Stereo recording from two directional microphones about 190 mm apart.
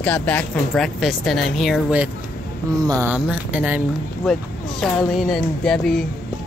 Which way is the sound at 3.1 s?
5° right (ahead or behind).